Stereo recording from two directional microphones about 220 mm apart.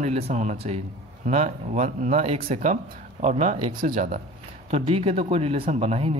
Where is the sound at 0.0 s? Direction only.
35° right (ahead or behind).